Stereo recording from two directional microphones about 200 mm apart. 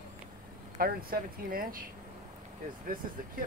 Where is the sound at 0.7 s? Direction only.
45° right (ahead or behind).